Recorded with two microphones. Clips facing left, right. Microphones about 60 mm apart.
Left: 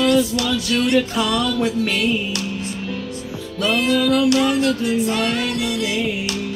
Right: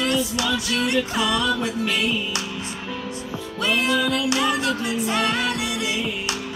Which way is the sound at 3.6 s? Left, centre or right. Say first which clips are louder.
Left 3 dB; right.